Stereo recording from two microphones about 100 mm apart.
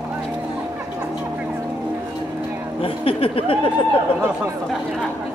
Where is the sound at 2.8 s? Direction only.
65° left (ahead or behind).